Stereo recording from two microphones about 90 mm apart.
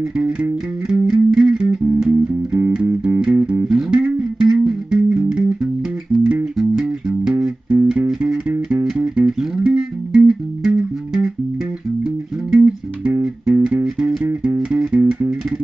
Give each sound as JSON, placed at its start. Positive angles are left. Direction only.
{"t": 0.2, "sound": "music", "side_deg": -10}
{"t": 7.7, "sound": "music", "side_deg": -20}
{"t": 8.1, "sound": "music", "side_deg": -5}
{"t": 14.2, "sound": "music", "side_deg": -20}
{"t": 14.7, "sound": "music", "side_deg": -10}